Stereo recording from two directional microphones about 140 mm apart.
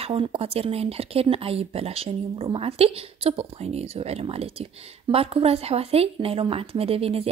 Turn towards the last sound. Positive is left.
turn(degrees=-45)  # may be behind; listen again after turning